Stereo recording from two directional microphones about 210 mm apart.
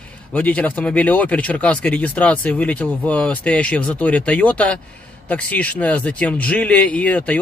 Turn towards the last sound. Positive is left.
turn(degrees=5)  # may be behind; listen again after turning